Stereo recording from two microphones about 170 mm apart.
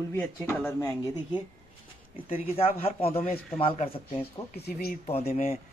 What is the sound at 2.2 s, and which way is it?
A man's voice, 35° left (ahead or behind).